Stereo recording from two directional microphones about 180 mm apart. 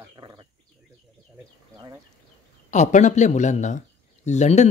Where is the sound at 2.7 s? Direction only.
40° left (ahead or behind).